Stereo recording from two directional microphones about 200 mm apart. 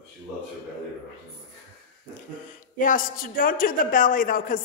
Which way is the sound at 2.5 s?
40° left (ahead or behind).